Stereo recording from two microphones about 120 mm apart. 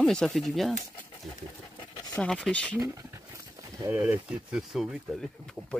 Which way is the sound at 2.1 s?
10° left (ahead or behind).